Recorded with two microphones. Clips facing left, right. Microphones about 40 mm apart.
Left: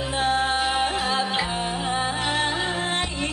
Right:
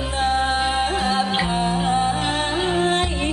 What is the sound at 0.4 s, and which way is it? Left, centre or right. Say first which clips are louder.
Music: right 2 dB; centre.